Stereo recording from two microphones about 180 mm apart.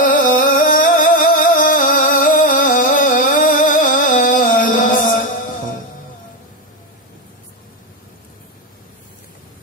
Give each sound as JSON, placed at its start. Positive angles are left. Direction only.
{"t": 0.0, "sound": "music", "side_deg": 50}